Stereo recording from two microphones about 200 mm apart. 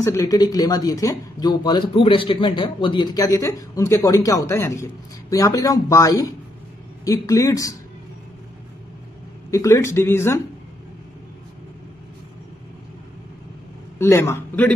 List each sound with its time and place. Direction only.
0.0 s speech: 15° left (ahead or behind)
9.5 s speech: 15° left (ahead or behind)
13.9 s a man's voice: 15° left (ahead or behind)